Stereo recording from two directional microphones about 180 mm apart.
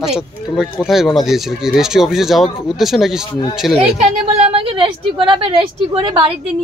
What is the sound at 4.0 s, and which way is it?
A woman's voice, 35° right (ahead or behind).